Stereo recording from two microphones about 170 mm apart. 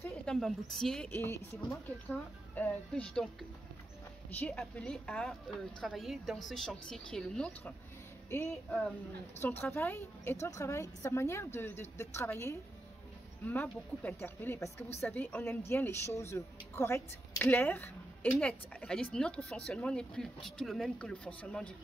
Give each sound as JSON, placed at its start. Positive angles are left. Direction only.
{"t": 0.1, "sound": "a woman's voice", "side_deg": 0}